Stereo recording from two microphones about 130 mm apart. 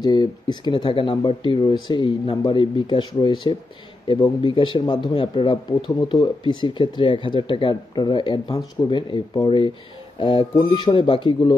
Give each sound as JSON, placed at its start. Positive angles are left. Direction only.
{"t": 0.0, "sound": "speech", "side_deg": 35}